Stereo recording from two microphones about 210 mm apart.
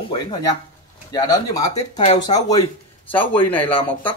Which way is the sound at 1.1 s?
15° left (ahead or behind).